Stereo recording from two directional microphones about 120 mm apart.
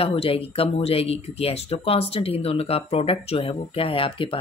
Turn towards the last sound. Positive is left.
turn(degrees=50)  # may be behind; listen again after turning